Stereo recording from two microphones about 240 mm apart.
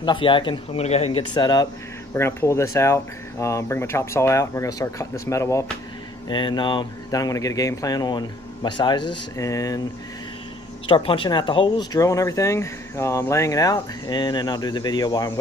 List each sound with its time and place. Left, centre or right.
0.0 s speech: centre
10.9 s speech: left